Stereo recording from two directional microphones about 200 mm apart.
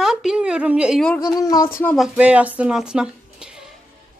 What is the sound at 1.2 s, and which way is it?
Speech, 20° left (ahead or behind).